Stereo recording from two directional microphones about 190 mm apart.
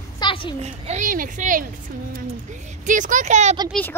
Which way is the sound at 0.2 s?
25° left (ahead or behind).